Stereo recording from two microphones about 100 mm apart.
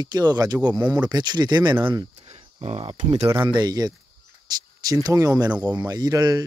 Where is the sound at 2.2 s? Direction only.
90° right.